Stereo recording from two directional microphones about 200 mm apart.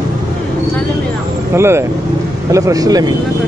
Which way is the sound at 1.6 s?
15° right (ahead or behind).